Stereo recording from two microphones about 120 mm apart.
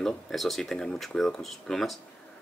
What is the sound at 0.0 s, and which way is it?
Speech, centre (ahead or behind).